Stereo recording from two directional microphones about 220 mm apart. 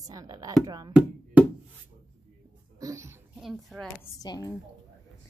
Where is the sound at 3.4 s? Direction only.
Centre (ahead or behind).